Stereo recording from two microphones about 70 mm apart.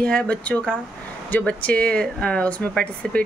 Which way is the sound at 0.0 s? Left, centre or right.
Centre.